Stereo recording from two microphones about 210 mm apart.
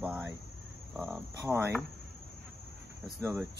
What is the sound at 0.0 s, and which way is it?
Speech, 10° right (ahead or behind).